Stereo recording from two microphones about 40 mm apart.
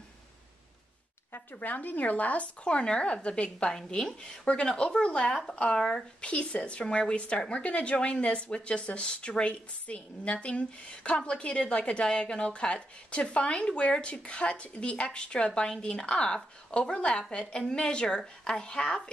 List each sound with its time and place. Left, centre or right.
1.5 s a woman's voice: left
3.7 s speech: centre